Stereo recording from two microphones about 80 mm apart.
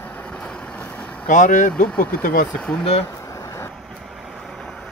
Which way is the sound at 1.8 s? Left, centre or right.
Left.